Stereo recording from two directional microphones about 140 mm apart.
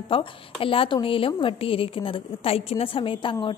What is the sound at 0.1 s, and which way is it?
A woman's voice, 40° left (ahead or behind).